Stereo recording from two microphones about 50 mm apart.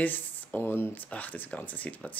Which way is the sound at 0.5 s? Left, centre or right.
Left.